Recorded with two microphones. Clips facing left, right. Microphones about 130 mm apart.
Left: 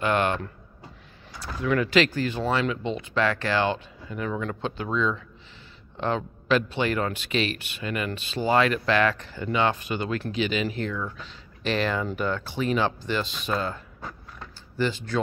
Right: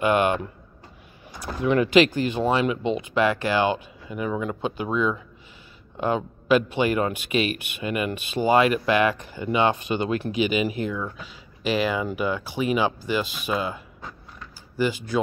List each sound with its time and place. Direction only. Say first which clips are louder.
0.0 s a sound: right 3 dB; 10° right (ahead or behind)
1.4 s speech: right 3 dB; 20° right (ahead or behind)
14.8 s speech: right 2 dB; 10° right (ahead or behind)